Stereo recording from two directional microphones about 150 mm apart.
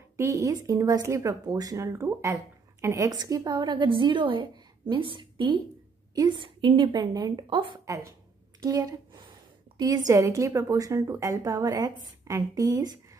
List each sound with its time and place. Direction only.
0.2 s a woman's voice: 20° right (ahead or behind)
7.8 s a woman's voice: 20° right (ahead or behind)